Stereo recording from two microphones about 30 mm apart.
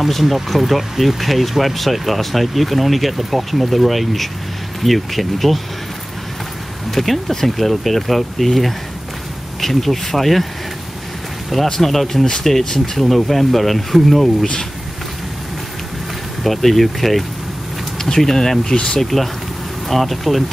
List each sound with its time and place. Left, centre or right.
0.1 s speech: centre
6.9 s speech: centre
11.5 s speech: centre
12.6 s speech: centre
14.4 s speech: centre
16.4 s speech: centre